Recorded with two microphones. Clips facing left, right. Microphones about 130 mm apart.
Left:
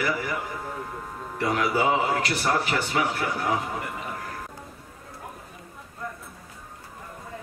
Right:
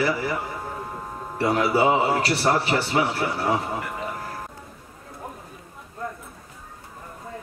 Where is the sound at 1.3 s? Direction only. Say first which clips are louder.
Right 4 dB; 30° right (ahead or behind).